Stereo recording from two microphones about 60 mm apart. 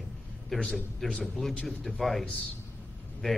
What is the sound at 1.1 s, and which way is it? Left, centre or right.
A man's voice, centre.